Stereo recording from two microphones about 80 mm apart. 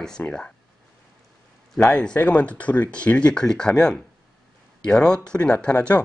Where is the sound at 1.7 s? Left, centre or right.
Centre.